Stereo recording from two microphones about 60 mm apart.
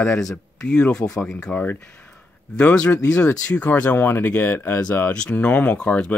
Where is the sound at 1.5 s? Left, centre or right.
Left.